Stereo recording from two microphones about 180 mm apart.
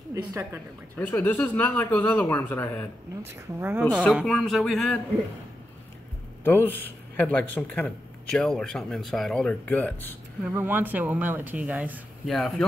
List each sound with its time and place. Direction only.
0.1 s speech: 20° right (ahead or behind)
0.9 s a man's voice: 10° left (ahead or behind)
3.2 s speech: 15° right (ahead or behind)
4.0 s speech: centre (ahead or behind)
6.7 s a man's voice: 10° left (ahead or behind)
10.4 s speech: 10° right (ahead or behind)